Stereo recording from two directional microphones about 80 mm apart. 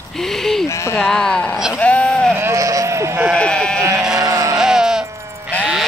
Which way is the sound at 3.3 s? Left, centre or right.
Centre.